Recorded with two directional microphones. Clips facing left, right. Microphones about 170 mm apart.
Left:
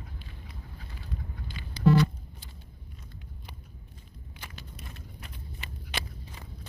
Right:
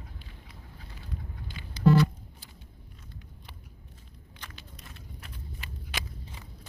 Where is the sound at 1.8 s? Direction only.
30° left (ahead or behind).